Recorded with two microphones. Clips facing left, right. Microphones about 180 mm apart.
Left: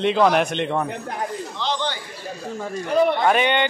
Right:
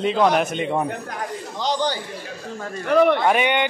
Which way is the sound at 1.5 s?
40° right (ahead or behind).